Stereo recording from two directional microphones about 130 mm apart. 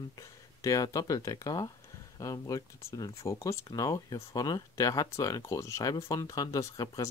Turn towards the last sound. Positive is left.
turn(degrees=25)  # may be behind; listen again after turning